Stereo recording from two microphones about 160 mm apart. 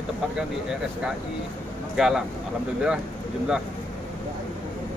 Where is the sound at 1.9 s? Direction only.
5° right (ahead or behind).